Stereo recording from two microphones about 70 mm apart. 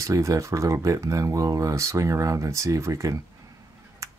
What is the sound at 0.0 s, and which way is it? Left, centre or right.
Speech, right.